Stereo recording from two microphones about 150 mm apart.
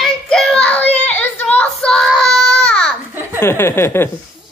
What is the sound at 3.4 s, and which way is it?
Speech, 15° left (ahead or behind).